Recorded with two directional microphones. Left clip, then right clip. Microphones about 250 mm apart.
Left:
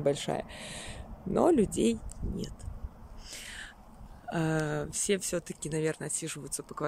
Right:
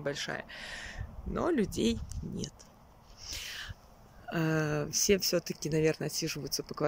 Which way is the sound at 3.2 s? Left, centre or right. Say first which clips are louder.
Right 3 dB; centre.